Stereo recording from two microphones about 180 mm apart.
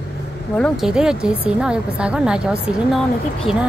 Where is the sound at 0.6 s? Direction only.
Centre (ahead or behind).